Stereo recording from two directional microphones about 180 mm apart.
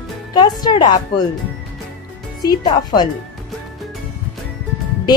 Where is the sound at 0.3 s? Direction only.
25° left (ahead or behind).